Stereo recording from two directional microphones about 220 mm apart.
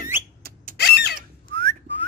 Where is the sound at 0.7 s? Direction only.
45° left (ahead or behind).